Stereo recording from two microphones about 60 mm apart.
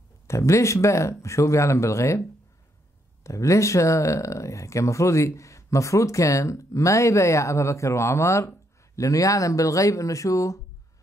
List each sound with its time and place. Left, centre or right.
0.3 s speech: left
3.3 s speech: left
8.9 s speech: left